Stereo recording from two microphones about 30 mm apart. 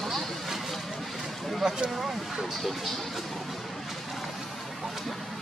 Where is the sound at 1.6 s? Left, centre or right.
Right.